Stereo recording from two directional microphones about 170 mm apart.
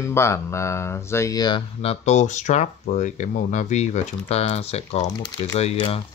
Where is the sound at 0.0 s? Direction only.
15° left (ahead or behind).